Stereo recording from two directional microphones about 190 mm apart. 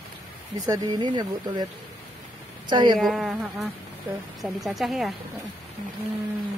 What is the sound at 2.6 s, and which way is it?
Speech, 25° right (ahead or behind).